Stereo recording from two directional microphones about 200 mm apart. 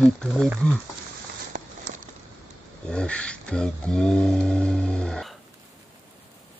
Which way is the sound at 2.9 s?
5° left (ahead or behind).